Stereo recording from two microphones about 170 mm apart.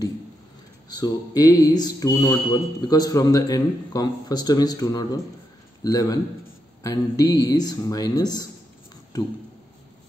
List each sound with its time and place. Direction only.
0.8 s mantra: 25° left (ahead or behind)